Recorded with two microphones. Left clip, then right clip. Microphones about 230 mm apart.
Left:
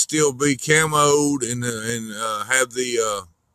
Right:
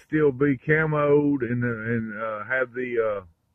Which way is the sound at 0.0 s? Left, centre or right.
Centre.